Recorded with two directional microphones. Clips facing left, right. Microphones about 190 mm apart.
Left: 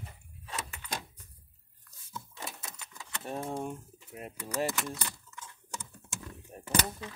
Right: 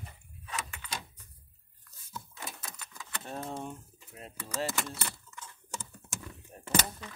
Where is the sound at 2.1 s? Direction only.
25° left (ahead or behind).